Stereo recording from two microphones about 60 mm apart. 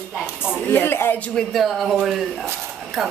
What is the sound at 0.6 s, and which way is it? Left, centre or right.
Speech, left.